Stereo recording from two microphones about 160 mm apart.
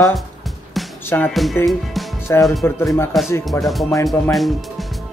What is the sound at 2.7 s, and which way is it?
Speech, 15° left (ahead or behind).